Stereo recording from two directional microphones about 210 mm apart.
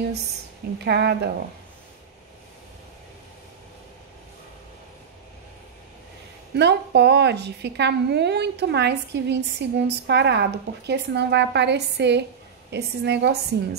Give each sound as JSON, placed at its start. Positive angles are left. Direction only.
{"t": 0.7, "sound": "a woman's voice", "side_deg": -50}
{"t": 6.5, "sound": "a woman's voice", "side_deg": -55}